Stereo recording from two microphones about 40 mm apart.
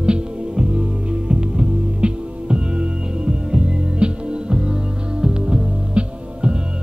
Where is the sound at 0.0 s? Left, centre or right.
Right.